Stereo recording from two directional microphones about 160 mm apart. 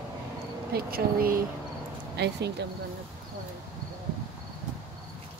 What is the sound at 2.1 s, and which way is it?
Speech, 90° right.